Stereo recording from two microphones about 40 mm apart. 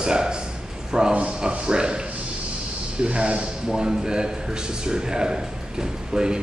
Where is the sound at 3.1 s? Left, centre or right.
Right.